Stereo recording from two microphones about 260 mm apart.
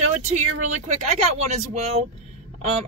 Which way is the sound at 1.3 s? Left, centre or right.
Right.